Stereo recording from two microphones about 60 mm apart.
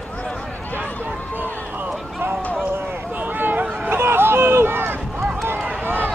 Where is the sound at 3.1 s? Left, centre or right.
Right.